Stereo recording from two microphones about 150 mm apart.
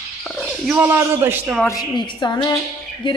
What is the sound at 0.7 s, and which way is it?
Speech, 15° right (ahead or behind).